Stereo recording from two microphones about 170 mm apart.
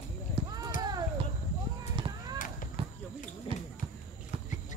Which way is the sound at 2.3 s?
50° left (ahead or behind).